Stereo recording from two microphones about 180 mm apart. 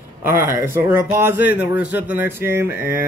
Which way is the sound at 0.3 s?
15° right (ahead or behind).